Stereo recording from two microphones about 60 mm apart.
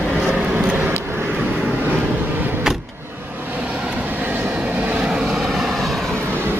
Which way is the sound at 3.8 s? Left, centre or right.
Right.